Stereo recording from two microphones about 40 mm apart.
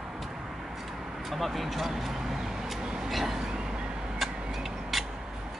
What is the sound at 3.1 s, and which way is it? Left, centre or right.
Vehicle, centre.